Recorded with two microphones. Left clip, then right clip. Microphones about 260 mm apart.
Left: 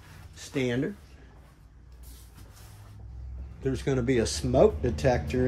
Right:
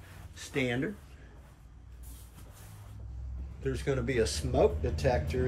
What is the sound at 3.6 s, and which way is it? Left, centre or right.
Speech, centre.